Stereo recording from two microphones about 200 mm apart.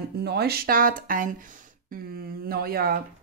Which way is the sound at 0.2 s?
55° right (ahead or behind).